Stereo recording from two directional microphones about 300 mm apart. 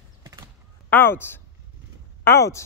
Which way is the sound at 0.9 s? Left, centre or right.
Centre.